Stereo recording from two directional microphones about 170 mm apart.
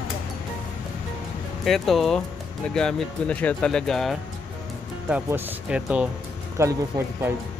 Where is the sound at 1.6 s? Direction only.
Centre (ahead or behind); by 6.7 s 15° right (ahead or behind).